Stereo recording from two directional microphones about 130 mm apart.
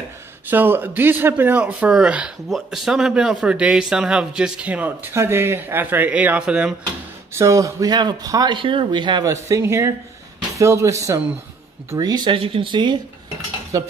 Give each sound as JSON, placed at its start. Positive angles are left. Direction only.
{"t": 0.5, "sound": "speech", "side_deg": -15}
{"t": 7.3, "sound": "speech", "side_deg": -25}
{"t": 9.3, "sound": "speech", "side_deg": -20}
{"t": 12.4, "sound": "speech", "side_deg": -40}
{"t": 13.7, "sound": "speech", "side_deg": -25}